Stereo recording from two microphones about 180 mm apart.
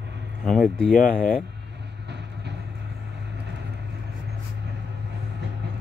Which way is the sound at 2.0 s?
70° right (ahead or behind).